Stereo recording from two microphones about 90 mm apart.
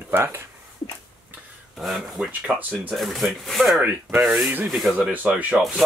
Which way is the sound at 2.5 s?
15° right (ahead or behind).